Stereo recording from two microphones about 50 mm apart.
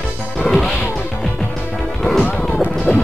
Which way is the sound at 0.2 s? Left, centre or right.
Left.